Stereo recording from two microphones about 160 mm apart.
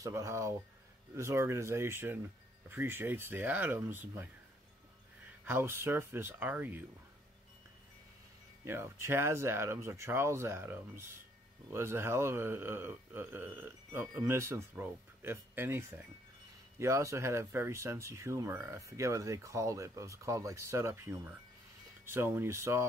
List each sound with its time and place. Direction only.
0.0 s speech: 20° right (ahead or behind)
5.4 s speech: 15° right (ahead or behind)
8.6 s speech: 15° right (ahead or behind)